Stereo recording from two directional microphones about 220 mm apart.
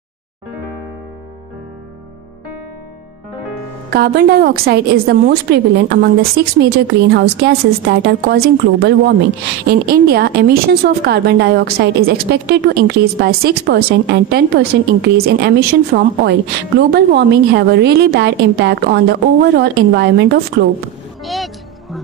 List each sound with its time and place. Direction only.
3.9 s a woman's voice: 45° right (ahead or behind)
21.2 s music: centre (ahead or behind)